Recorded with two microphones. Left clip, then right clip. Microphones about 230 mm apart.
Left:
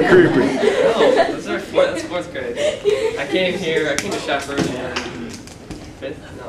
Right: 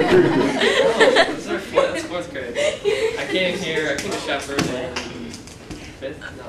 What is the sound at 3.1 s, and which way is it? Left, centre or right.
Speech, centre.